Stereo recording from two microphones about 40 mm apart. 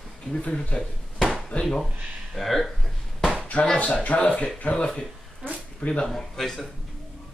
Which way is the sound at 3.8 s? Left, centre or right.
Left.